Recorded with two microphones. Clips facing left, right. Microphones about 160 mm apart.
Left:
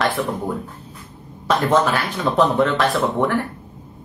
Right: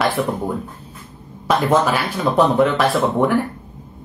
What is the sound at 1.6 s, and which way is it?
A woman's voice, 10° right (ahead or behind).